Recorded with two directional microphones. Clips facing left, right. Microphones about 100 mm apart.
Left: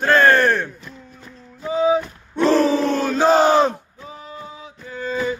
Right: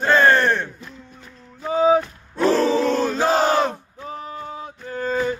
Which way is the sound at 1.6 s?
45° right (ahead or behind).